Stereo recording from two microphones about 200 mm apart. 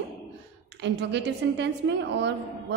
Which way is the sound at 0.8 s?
60° right (ahead or behind).